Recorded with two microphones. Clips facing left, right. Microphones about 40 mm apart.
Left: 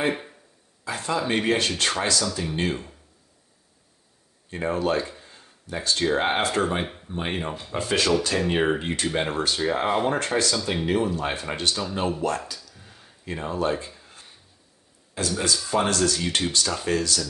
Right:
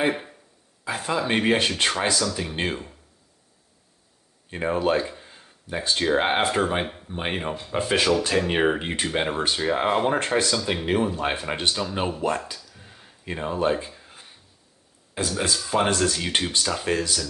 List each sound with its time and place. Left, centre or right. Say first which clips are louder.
0.0 s a sound: right 1 dB; centre
0.8 s speech: right 1 dB; centre
4.5 s speech: right 2 dB; centre
10.1 s speech: right 1 dB; right
10.5 s speech: right 1 dB; centre
10.9 s speech: right 1 dB; centre
12.5 s a sound: right 1 dB; centre
15.1 s speech: even; centre